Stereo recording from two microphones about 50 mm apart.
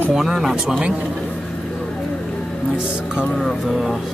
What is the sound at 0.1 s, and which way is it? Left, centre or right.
Speech, centre.